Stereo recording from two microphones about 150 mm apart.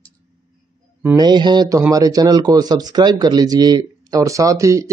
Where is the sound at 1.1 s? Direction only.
30° right (ahead or behind).